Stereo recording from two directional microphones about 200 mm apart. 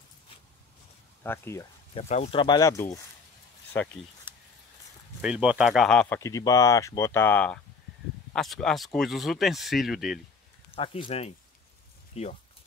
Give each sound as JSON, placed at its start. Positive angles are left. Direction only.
{"t": 1.2, "sound": "speech", "side_deg": 10}
{"t": 2.0, "sound": "speech", "side_deg": 35}
{"t": 2.4, "sound": "speech", "side_deg": 20}
{"t": 5.2, "sound": "speech", "side_deg": -5}
{"t": 10.7, "sound": "speech", "side_deg": 25}